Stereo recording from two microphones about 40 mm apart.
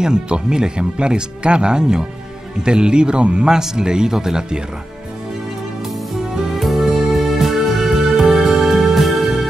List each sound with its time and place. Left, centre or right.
0.0 s speech: centre
3.4 s speech: centre
6.5 s music: centre